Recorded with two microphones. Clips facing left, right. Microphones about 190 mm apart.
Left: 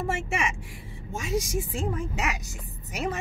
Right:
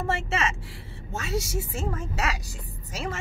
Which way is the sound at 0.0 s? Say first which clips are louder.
Right 1 dB; 15° left (ahead or behind).